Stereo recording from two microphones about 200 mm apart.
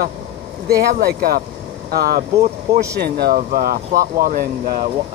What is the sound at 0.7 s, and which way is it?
Speech, 50° right (ahead or behind).